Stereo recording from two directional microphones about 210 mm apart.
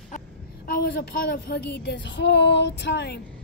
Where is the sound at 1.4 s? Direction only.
50° left (ahead or behind).